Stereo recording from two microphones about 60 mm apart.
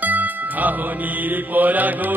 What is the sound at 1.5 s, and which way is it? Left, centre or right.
Mantra, right.